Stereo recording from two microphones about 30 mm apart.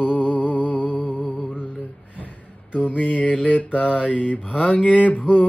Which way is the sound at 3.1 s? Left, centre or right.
Left.